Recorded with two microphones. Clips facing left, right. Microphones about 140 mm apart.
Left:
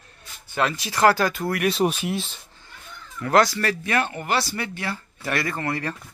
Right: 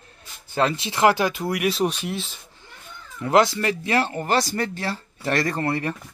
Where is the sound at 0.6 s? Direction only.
25° right (ahead or behind).